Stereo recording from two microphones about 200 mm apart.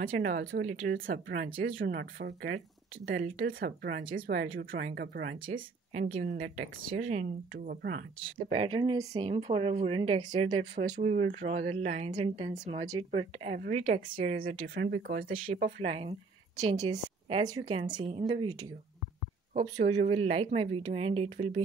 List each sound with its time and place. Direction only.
0.0 s speech: 45° right (ahead or behind)
4.1 s speech: 75° right (ahead or behind)
4.6 s speech: 50° right (ahead or behind)
7.0 s speech: 40° right (ahead or behind)
8.2 s a woman's voice: 25° right (ahead or behind)
12.8 s speech: 15° right (ahead or behind)
13.5 s speech: 35° right (ahead or behind)
15.3 s a woman's voice: 35° right (ahead or behind)
19.5 s speech: 35° right (ahead or behind)